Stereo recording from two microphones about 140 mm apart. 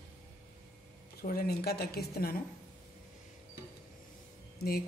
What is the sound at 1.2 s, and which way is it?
Speech, 90° left.